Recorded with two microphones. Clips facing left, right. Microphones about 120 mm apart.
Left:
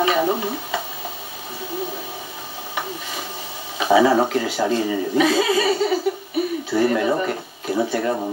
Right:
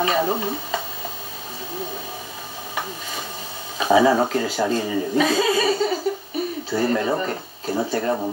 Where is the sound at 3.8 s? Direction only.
35° right (ahead or behind).